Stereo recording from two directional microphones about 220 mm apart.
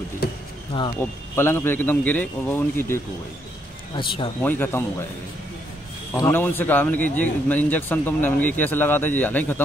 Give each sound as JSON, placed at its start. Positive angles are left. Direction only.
{"t": 0.7, "sound": "speech", "side_deg": 25}
{"t": 1.3, "sound": "a man's voice", "side_deg": 10}
{"t": 3.9, "sound": "speech", "side_deg": 25}
{"t": 4.4, "sound": "a man's voice", "side_deg": 10}
{"t": 6.1, "sound": "a man's voice", "side_deg": 10}